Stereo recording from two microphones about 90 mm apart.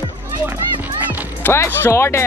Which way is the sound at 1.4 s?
25° left (ahead or behind).